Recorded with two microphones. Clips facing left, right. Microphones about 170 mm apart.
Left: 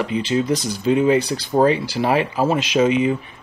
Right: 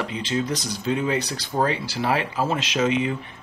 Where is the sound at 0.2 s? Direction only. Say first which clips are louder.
Left 5 dB; 10° left (ahead or behind).